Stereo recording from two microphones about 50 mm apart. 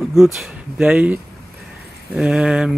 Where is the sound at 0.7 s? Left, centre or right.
Centre.